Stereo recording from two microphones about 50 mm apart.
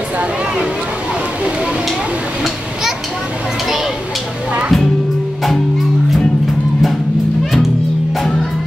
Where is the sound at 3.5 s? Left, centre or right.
Centre.